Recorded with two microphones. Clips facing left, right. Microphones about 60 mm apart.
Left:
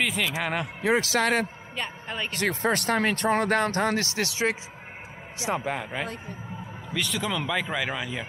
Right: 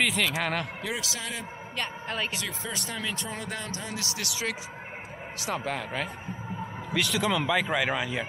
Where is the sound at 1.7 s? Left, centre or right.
Centre.